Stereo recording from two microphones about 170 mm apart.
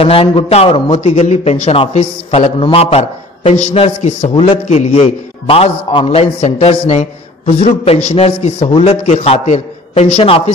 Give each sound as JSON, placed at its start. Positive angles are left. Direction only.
{"t": 0.0, "sound": "a man's voice", "side_deg": 35}